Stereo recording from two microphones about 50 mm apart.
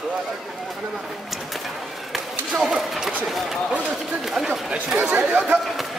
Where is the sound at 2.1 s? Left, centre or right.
Centre.